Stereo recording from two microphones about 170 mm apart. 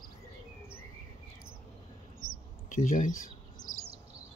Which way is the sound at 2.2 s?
50° left (ahead or behind).